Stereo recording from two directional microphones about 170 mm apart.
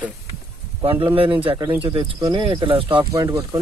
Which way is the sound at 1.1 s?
30° right (ahead or behind).